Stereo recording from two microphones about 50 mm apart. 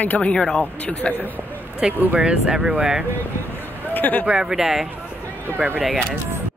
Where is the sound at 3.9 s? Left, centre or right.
Left.